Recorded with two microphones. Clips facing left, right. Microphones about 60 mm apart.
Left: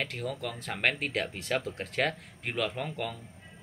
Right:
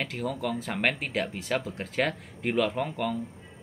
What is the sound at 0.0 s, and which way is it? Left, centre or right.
Speech, centre.